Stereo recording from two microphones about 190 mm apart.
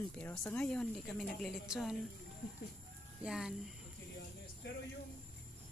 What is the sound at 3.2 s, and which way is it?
Speech, 5° right (ahead or behind).